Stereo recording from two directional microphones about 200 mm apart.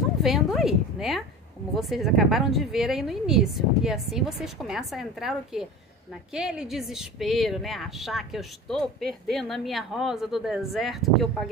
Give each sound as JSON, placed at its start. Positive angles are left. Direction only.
{"t": 0.2, "sound": "speech", "side_deg": 0}